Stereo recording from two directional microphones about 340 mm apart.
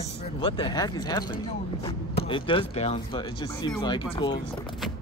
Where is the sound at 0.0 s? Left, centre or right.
Centre.